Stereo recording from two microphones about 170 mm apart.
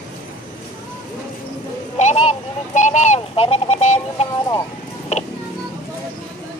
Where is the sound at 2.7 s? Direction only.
45° left (ahead or behind).